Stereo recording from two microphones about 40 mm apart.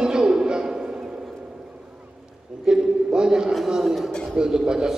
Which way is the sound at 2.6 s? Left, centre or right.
Centre.